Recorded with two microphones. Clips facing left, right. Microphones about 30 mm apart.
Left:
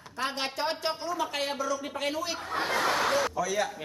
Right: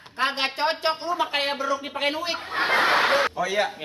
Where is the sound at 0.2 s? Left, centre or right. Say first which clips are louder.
Right 7 dB; right.